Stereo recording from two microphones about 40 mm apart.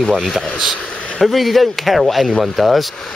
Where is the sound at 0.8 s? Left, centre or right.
Left.